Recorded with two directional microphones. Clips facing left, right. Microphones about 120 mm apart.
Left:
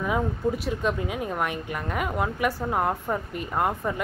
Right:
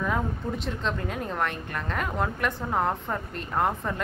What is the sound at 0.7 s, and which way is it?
A woman's voice, 5° left (ahead or behind).